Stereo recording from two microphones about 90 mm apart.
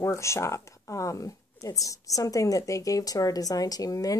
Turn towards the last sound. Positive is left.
turn(degrees=40)  # may be behind; listen again after turning